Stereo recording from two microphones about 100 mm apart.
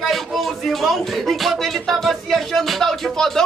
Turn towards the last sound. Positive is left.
turn(degrees=5)  # may be behind; listen again after turning